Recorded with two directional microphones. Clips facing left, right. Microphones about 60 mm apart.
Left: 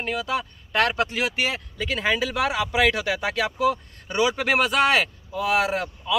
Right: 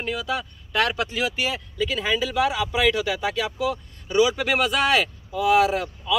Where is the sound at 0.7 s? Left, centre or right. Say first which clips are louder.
Left 1 dB; left.